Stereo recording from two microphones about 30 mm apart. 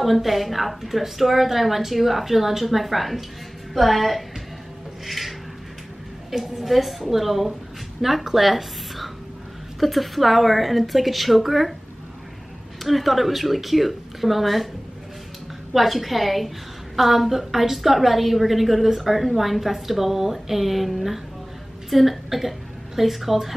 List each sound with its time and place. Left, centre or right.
0.0 s a woman's voice: centre
5.0 s music: centre
6.3 s a woman's voice: centre
8.4 s a sound: centre
9.8 s a woman's voice: centre
12.8 s a woman's voice: centre
15.7 s a woman's voice: centre